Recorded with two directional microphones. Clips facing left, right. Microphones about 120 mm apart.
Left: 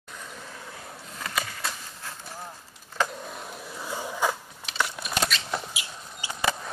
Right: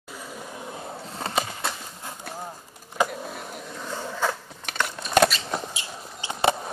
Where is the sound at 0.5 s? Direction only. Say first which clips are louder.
Right 6 dB; 20° right (ahead or behind).